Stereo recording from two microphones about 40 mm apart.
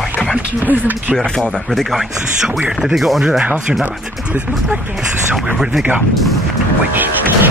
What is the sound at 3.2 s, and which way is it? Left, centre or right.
Speech, centre.